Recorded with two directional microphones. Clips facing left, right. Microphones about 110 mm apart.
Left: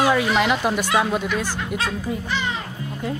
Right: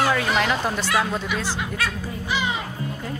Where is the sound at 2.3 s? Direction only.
10° right (ahead or behind).